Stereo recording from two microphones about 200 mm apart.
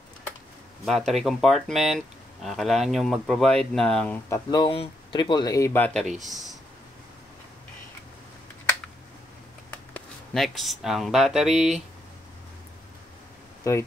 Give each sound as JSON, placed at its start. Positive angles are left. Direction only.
{"t": 0.8, "sound": "speech", "side_deg": 0}
{"t": 4.5, "sound": "speech", "side_deg": 25}
{"t": 9.7, "sound": "speech", "side_deg": 5}